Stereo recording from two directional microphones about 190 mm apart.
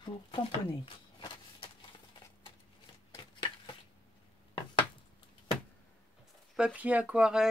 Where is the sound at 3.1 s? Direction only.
25° left (ahead or behind).